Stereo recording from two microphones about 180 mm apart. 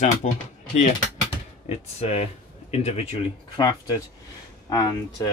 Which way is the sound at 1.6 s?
35° left (ahead or behind).